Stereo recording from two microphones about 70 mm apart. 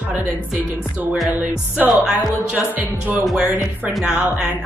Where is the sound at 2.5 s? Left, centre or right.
Right.